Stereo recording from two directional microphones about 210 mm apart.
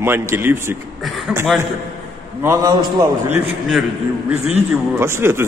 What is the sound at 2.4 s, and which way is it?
Speech, 15° right (ahead or behind).